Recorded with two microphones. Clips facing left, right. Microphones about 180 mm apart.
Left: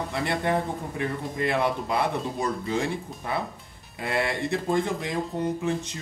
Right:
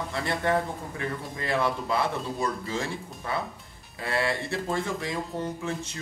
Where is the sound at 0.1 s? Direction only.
20° left (ahead or behind).